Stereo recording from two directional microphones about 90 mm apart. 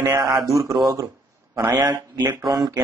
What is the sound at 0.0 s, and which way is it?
Speech, 50° right (ahead or behind).